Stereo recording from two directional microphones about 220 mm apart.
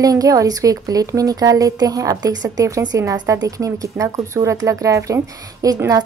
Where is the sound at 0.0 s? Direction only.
15° right (ahead or behind).